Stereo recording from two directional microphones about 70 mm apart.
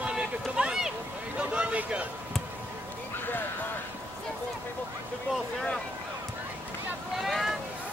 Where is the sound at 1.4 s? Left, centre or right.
Centre.